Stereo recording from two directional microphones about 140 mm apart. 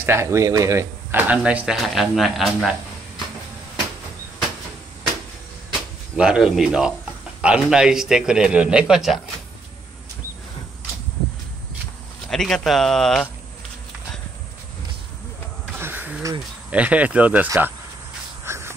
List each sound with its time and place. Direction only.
0.0 s speech: 20° right (ahead or behind); by 2.7 s centre (ahead or behind)
6.1 s a man's voice: 5° right (ahead or behind)
12.3 s a man's voice: 5° left (ahead or behind)
15.8 s a sound: 15° right (ahead or behind)
16.7 s speech: 10° right (ahead or behind)
18.4 s a sound: 20° right (ahead or behind)